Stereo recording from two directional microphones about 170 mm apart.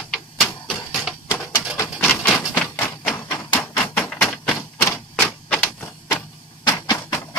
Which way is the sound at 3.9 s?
5° left (ahead or behind).